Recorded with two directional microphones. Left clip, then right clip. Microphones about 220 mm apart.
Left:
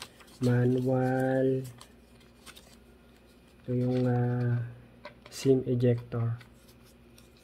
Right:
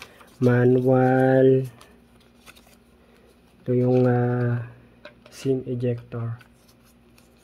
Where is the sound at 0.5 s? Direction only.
40° right (ahead or behind).